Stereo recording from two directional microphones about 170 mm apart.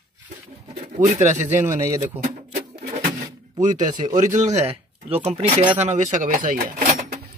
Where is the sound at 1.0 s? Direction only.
45° right (ahead or behind).